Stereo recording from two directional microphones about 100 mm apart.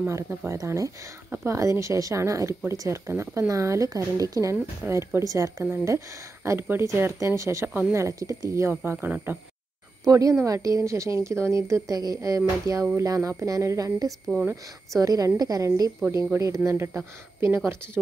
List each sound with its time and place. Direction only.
0.5 s speech: 30° right (ahead or behind)
10.0 s speech: 35° right (ahead or behind)